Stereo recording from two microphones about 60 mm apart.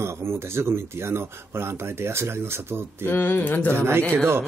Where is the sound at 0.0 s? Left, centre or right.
Right.